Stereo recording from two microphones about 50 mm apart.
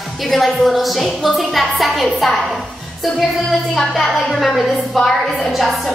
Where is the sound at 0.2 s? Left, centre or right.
Centre.